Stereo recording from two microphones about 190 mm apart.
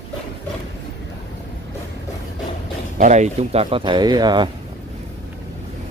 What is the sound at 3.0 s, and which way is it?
Speech, 40° right (ahead or behind).